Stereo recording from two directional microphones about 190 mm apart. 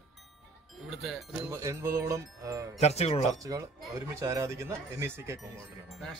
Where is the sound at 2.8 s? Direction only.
35° left (ahead or behind).